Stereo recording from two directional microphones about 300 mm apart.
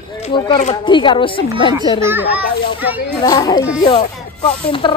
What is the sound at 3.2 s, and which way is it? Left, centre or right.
Speech, centre.